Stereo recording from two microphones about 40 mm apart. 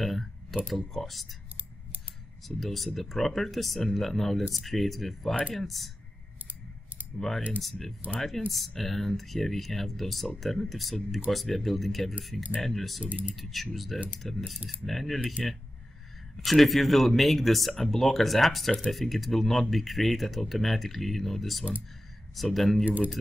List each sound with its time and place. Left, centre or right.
0.0 s a sound: centre
0.7 s speech: centre
2.4 s speech: centre
7.2 s speech: centre
8.0 s speech: right
8.5 s speech: centre
22.8 s speech: right